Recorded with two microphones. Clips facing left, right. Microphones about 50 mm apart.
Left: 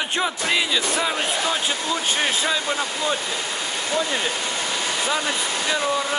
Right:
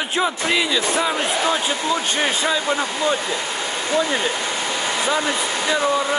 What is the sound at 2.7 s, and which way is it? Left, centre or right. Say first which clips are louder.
Speech: right 3 dB; right.